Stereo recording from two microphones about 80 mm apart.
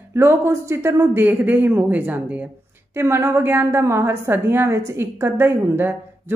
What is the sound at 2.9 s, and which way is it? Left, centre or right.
A woman's voice, right.